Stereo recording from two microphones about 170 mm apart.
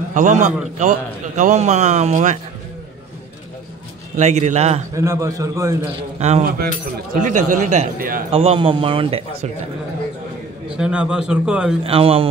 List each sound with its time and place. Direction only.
0.1 s a man's voice: 50° right (ahead or behind)
4.2 s speech: 40° right (ahead or behind)
4.9 s a man's voice: 20° right (ahead or behind)
6.1 s a man's voice: 40° right (ahead or behind)
8.3 s speech: 35° right (ahead or behind)
10.8 s a man's voice: 5° right (ahead or behind)
11.8 s speech: 35° right (ahead or behind)